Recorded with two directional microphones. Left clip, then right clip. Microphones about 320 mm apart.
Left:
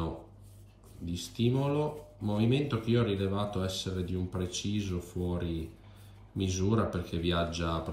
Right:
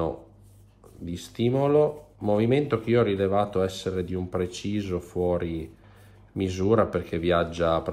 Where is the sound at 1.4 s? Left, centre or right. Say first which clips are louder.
Right 10 dB; right.